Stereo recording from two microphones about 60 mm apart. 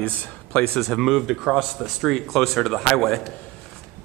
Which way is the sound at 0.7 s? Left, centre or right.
Centre.